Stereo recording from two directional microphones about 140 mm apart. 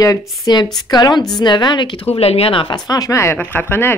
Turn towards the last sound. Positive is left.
turn(degrees=15)  # may be behind; listen again after turning